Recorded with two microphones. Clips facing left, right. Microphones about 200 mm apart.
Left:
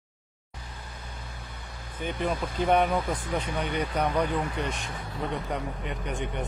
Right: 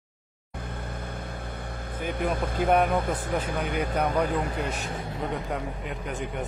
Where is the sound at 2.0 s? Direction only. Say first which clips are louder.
Right 1 dB; 55° right (ahead or behind).